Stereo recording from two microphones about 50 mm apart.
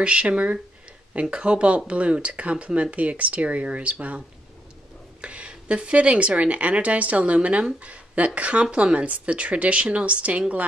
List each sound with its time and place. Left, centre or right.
0.0 s speech: right
5.2 s speech: right